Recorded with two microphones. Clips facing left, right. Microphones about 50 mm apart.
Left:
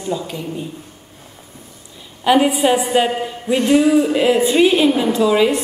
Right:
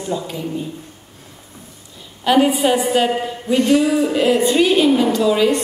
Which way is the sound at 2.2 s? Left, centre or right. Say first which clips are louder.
Left 1 dB; centre.